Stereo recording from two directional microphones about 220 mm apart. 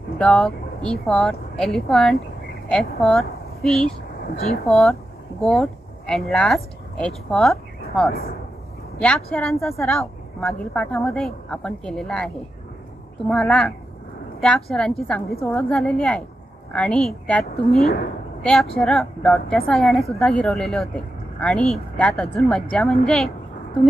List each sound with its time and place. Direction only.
0.2 s a woman's voice: centre (ahead or behind)
8.1 s speech: 45° left (ahead or behind)
9.0 s a woman's voice: 5° left (ahead or behind)